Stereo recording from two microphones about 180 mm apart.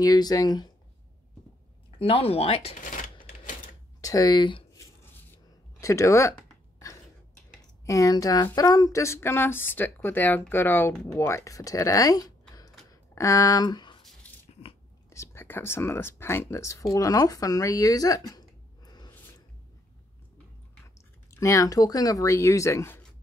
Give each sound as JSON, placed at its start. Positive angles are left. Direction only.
{"t": 0.0, "sound": "speech", "side_deg": 20}
{"t": 1.9, "sound": "speech", "side_deg": 30}
{"t": 4.0, "sound": "a sound", "side_deg": 20}
{"t": 5.8, "sound": "speech", "side_deg": 15}
{"t": 7.8, "sound": "speech", "side_deg": 15}
{"t": 12.9, "sound": "a sound", "side_deg": 15}
{"t": 15.0, "sound": "speech", "side_deg": 15}
{"t": 18.9, "sound": "gasp", "side_deg": 20}
{"t": 21.3, "sound": "speech", "side_deg": 15}